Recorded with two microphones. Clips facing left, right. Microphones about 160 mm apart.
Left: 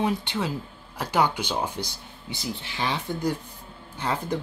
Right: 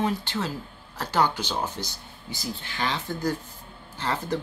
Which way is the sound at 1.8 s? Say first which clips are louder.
Left 2 dB; 15° left (ahead or behind).